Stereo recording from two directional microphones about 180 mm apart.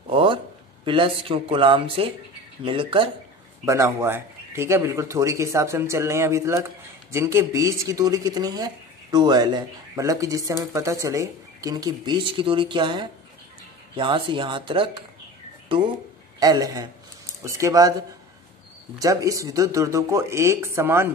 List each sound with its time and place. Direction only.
0.1 s a sound: 30° right (ahead or behind)
0.8 s speech: 30° right (ahead or behind)
3.6 s speech: 15° right (ahead or behind)
16.3 s speech: 20° right (ahead or behind)
18.9 s speech: 20° right (ahead or behind)